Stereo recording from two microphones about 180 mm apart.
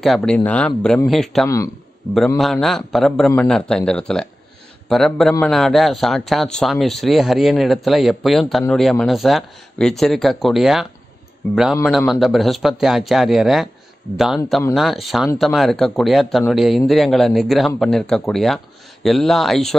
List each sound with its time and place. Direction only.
0.0 s speech: centre (ahead or behind)